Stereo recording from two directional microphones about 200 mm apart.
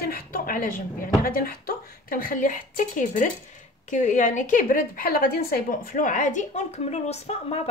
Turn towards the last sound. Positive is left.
turn(degrees=30)  # may be behind; listen again after turning